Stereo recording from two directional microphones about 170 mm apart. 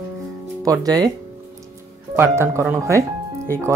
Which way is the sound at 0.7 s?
20° right (ahead or behind).